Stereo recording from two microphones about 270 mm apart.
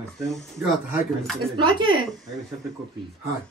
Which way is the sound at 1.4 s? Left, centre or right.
Centre.